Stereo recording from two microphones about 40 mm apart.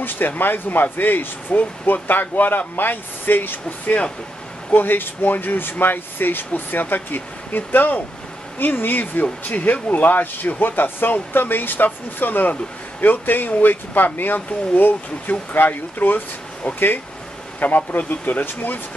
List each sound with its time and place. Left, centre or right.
0.0 s speech: left
17.6 s speech: left